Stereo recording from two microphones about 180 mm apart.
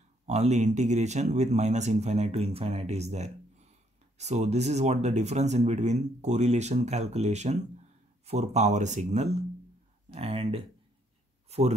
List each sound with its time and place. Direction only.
0.3 s speech: 40° right (ahead or behind)